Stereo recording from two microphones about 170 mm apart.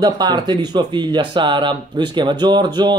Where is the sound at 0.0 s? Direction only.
25° right (ahead or behind).